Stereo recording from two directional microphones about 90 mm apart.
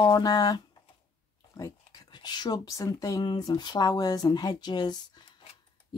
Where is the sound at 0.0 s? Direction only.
45° left (ahead or behind).